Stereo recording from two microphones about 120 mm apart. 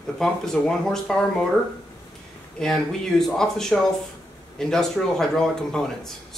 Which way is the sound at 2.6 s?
5° left (ahead or behind).